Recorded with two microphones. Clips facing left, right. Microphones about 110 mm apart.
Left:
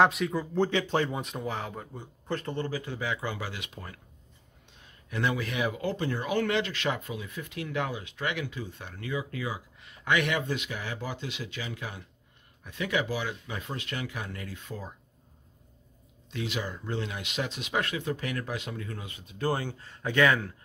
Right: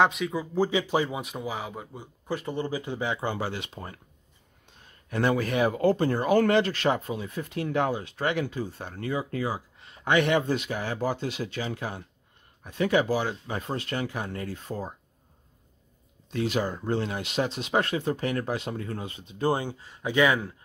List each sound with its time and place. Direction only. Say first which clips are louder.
0.0 s speech: even; centre (ahead or behind); by 4.0 s 30° right (ahead or behind)
5.1 s speech: right 5 dB; 45° right (ahead or behind)
16.3 s speech: right 7 dB; 45° right (ahead or behind); by 20.5 s 15° right (ahead or behind)